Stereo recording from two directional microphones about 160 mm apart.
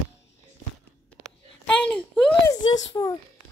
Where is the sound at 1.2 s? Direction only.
5° left (ahead or behind).